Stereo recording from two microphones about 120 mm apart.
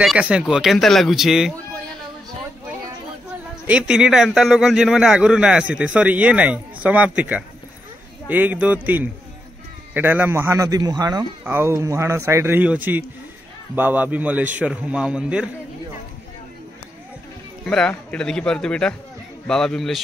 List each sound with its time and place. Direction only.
0.0 s speech: 5° right (ahead or behind)
3.6 s a man's voice: 10° right (ahead or behind); by 11.2 s 35° right (ahead or behind)
11.4 s a man's voice: 20° right (ahead or behind)
17.6 s a man's voice: 5° left (ahead or behind)